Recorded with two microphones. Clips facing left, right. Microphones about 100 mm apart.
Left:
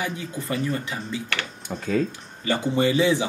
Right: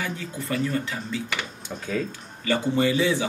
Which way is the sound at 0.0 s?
15° left (ahead or behind).